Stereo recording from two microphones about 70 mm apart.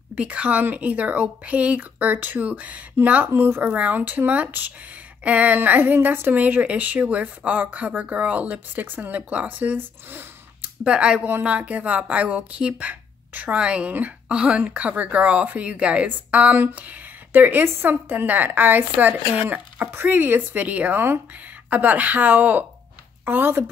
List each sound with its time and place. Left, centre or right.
0.1 s a woman's voice: centre
3.3 s speech: right
3.6 s a woman's voice: right